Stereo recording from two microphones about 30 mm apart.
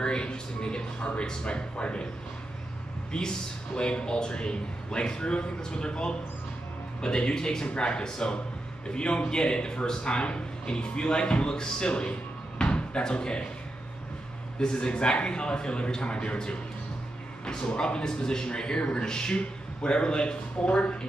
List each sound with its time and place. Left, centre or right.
0.0 s speech: left
3.1 s speech: left
11.9 s drawer open or close: left
13.0 s speech: left
14.6 s speech: left
17.6 s speech: left
18.8 s speech: left
19.0 s speech: left